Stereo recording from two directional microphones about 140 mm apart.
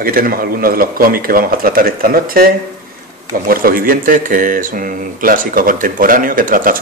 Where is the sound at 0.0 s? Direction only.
90° right.